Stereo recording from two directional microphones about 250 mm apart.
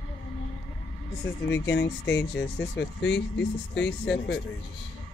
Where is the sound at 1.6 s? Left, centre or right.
Left.